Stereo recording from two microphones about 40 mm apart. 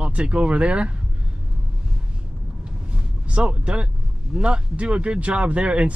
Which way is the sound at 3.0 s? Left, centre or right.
Right.